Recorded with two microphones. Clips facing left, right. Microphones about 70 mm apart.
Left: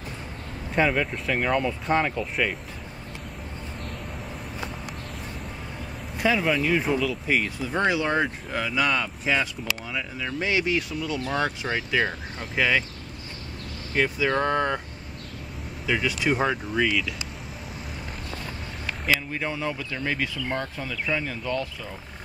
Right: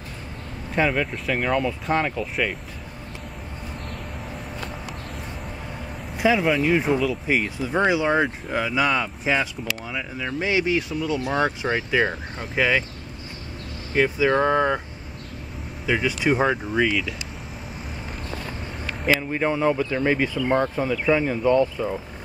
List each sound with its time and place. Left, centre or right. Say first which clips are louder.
0.7 s speech: right 1 dB; centre
6.1 s speech: right 3 dB; centre
13.9 s speech: right 4 dB; centre
15.9 s speech: right 3 dB; centre
19.3 s speech: right 8 dB; centre